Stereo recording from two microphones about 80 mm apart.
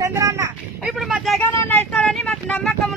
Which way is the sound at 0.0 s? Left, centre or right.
Right.